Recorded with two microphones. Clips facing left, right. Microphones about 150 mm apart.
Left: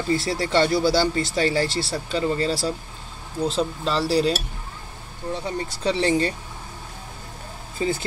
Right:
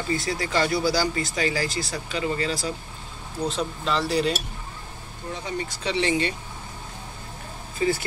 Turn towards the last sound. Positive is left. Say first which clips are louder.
# right 1 dB
turn(degrees=25)  # may be behind; listen again after turning